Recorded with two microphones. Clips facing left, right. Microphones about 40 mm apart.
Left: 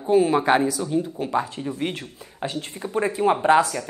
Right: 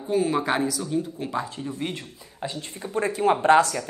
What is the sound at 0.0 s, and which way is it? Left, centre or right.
Speech, left.